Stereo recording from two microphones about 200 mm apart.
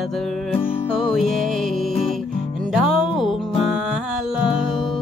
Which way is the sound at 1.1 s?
Centre (ahead or behind).